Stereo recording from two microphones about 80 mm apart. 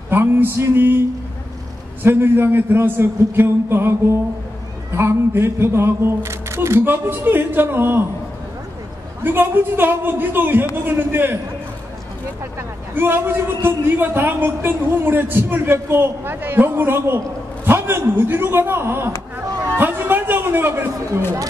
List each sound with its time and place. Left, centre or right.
0.1 s a man's voice: right
2.0 s a man's voice: right
4.9 s a man's voice: right
9.2 s a man's voice: right
12.9 s a man's voice: right